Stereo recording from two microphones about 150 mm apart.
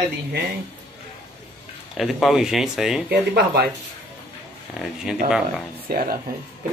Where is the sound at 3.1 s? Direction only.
90° right.